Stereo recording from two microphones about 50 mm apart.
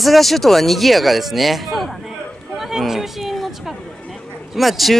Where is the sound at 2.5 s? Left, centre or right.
Centre.